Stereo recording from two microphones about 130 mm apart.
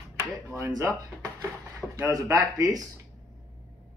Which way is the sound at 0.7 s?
25° right (ahead or behind).